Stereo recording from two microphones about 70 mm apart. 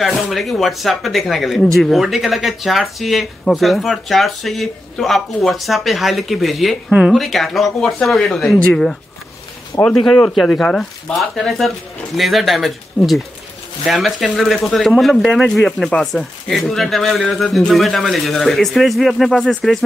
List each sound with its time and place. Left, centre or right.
0.0 s speech: centre
9.8 s speech: centre